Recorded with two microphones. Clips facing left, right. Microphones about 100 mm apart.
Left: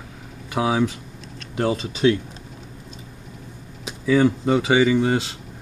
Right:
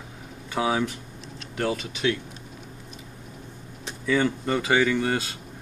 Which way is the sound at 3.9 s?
10° left (ahead or behind).